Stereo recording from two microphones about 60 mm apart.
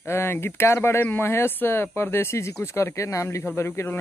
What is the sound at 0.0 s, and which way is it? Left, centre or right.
Speech, left.